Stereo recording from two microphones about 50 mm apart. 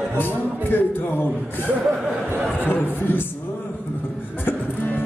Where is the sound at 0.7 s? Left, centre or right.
Left.